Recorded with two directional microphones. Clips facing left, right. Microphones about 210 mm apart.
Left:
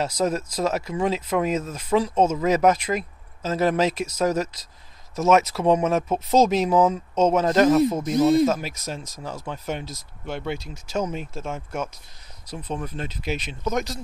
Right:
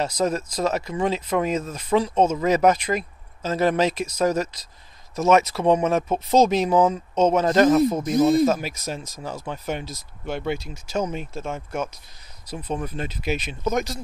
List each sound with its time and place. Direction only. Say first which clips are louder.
0.0 s speech: even; 5° left (ahead or behind)